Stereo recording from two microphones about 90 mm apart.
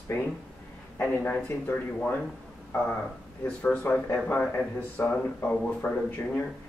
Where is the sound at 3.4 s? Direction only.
15° left (ahead or behind).